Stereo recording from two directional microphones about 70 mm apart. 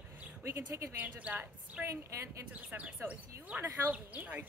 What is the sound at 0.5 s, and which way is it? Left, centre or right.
Speech, right.